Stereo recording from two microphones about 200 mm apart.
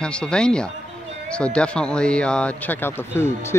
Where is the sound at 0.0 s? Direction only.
5° left (ahead or behind).